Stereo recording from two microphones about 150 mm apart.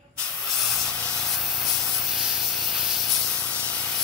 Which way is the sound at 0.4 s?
Centre (ahead or behind).